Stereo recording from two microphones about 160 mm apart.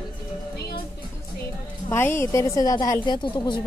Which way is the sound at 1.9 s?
15° left (ahead or behind).